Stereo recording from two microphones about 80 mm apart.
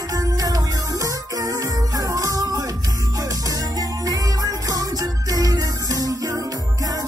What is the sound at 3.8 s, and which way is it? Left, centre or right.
Music, right.